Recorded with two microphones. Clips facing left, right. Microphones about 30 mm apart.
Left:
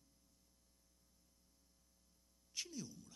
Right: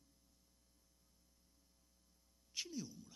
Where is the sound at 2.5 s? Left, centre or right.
Centre.